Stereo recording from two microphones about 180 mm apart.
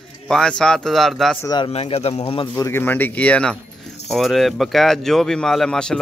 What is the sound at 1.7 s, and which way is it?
Speech, 35° left (ahead or behind).